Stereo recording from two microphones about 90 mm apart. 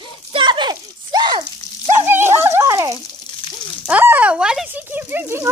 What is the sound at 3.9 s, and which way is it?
Speech, 20° right (ahead or behind).